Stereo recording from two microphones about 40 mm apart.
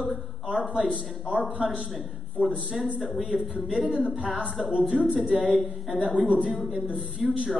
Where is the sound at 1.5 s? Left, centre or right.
Centre.